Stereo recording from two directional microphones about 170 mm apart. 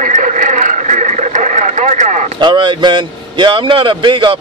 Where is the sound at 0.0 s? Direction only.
50° right (ahead or behind).